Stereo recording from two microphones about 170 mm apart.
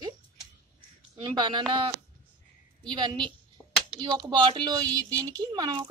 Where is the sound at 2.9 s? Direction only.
25° right (ahead or behind).